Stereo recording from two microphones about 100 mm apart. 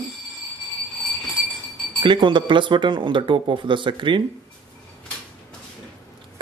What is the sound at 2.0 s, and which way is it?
Speech, 55° right (ahead or behind).